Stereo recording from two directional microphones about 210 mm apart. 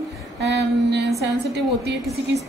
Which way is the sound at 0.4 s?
55° right (ahead or behind).